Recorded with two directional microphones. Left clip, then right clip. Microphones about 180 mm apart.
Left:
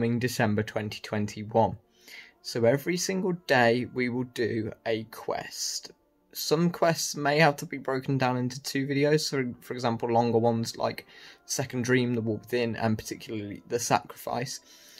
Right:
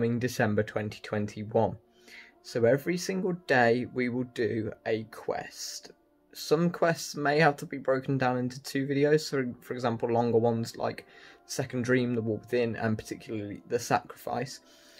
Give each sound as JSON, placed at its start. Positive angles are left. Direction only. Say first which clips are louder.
{"t": 0.0, "sound": "speech", "louder": "left 1 dB", "side_deg": 15}